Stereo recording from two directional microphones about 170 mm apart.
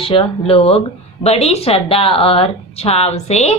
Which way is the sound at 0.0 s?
30° left (ahead or behind).